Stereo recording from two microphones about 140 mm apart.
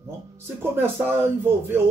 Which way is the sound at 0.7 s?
15° right (ahead or behind).